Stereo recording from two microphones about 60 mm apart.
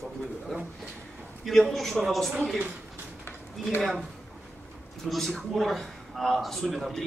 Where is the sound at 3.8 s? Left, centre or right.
Centre.